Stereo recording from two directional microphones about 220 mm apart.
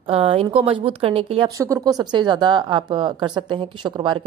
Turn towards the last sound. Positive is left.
turn(degrees=-20)  # may be behind; listen again after turning